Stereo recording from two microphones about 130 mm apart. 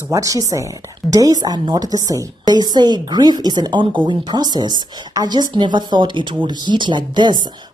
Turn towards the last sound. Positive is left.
turn(degrees=-35)  # may be behind; listen again after turning